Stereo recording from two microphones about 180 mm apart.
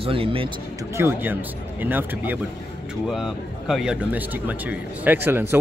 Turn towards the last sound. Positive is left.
turn(degrees=-10)  # may be behind; listen again after turning